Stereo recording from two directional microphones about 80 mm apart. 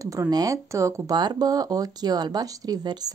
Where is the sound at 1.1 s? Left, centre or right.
Right.